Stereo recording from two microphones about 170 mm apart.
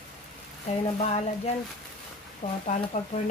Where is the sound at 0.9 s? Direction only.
40° left (ahead or behind).